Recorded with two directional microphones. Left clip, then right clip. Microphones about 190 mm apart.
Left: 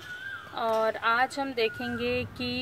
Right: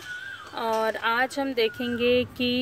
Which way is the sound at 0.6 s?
30° right (ahead or behind).